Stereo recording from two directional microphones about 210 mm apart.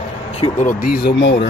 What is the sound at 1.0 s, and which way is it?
Speech, 60° left (ahead or behind).